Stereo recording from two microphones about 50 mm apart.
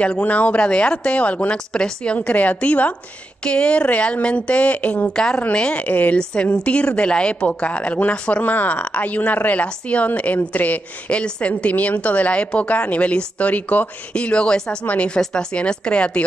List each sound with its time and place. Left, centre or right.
0.0 s a woman's voice: left
2.1 s a woman's voice: left